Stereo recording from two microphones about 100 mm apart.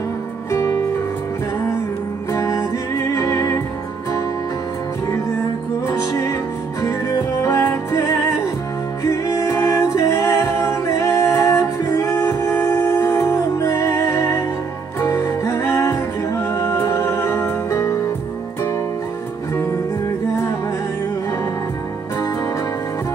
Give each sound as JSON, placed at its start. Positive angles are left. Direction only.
{"t": 0.5, "sound": "music", "side_deg": 30}
{"t": 2.3, "sound": "music", "side_deg": 30}
{"t": 5.9, "sound": "music", "side_deg": 30}
{"t": 19.5, "sound": "music", "side_deg": 25}